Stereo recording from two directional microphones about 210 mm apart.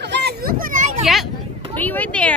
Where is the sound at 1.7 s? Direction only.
10° left (ahead or behind).